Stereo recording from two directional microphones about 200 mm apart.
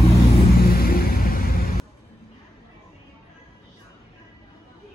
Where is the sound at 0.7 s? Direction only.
45° left (ahead or behind).